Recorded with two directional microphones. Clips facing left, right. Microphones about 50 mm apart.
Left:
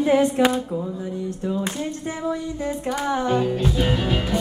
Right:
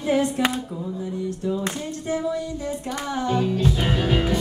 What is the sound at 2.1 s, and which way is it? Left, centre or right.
Female singing, left.